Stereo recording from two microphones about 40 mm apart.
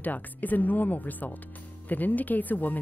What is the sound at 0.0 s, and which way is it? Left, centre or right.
Speech, left.